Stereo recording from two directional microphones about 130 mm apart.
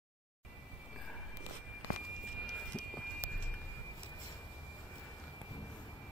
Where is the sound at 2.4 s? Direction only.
5° left (ahead or behind).